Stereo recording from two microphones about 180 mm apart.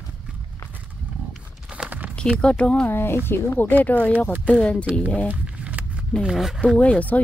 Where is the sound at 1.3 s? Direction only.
5° right (ahead or behind).